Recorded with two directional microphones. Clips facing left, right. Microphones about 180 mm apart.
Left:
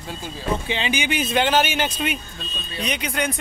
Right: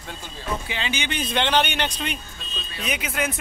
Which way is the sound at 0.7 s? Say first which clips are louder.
Left 5 dB; 15° left (ahead or behind).